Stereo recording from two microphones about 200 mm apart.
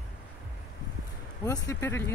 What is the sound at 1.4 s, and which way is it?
Speech, 15° left (ahead or behind).